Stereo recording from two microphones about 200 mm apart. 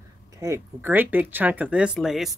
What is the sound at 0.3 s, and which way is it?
Speech, 15° right (ahead or behind).